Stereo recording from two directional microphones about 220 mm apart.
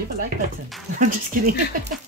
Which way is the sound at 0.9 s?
35° right (ahead or behind).